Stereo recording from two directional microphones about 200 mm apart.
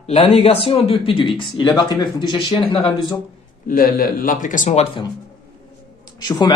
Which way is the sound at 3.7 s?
45° left (ahead or behind).